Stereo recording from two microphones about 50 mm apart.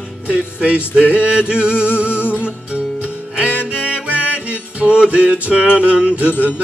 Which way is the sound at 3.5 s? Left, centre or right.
Left.